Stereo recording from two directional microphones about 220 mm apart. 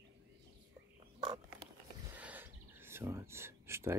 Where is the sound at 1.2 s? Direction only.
20° right (ahead or behind).